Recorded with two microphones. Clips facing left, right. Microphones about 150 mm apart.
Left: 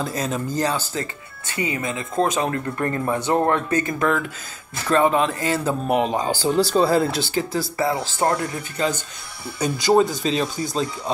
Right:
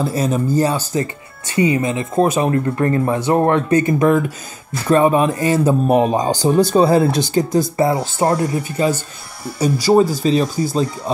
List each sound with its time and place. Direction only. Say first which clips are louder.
0.0 s speech: right 7 dB; 10° right (ahead or behind)
1.5 s speech: right 9 dB; 35° right (ahead or behind)
2.1 s speech: right 6 dB; 15° right (ahead or behind)